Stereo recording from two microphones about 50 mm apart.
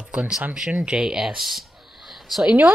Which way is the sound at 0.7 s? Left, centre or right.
Right.